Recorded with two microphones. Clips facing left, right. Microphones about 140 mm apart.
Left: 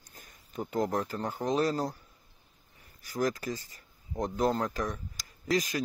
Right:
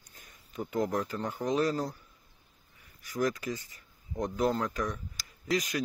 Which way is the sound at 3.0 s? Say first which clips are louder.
Even; 35° left (ahead or behind).